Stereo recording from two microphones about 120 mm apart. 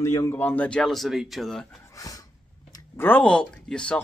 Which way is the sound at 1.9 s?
30° left (ahead or behind).